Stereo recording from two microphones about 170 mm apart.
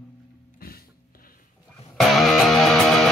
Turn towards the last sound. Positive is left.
turn(degrees=0)  # may be behind; listen again after turning